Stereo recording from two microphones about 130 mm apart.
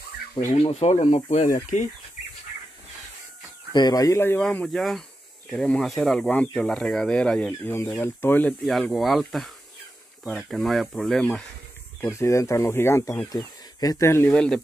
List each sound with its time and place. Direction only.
0.4 s speech: 55° left (ahead or behind); by 1.9 s 75° left (ahead or behind)
3.7 s speech: 30° left (ahead or behind)
4.4 s speech: 5° left (ahead or behind)
8.6 s speech: centre (ahead or behind)
12.0 s speech: 20° left (ahead or behind)
14.3 s speech: 5° left (ahead or behind)